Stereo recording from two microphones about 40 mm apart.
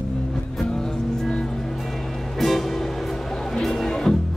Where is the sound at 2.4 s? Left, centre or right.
Centre.